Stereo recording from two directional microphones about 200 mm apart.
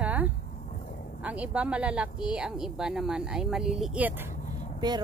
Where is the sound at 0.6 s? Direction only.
40° left (ahead or behind).